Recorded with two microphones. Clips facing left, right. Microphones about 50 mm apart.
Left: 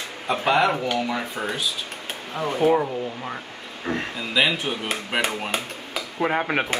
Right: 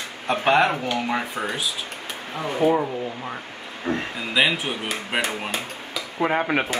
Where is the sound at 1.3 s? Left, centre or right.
Centre.